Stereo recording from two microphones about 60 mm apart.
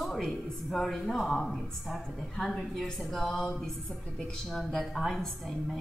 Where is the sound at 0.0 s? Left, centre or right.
Centre.